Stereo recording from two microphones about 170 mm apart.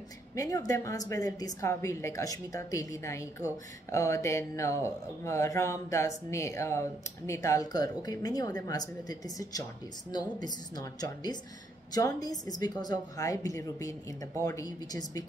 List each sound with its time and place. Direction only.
0.4 s a woman's voice: 20° left (ahead or behind)